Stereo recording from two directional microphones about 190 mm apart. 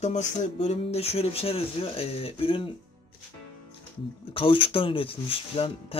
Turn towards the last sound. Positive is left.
turn(degrees=30)  # may be behind; listen again after turning